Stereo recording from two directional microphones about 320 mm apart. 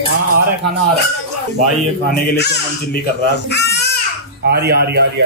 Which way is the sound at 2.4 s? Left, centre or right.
Left.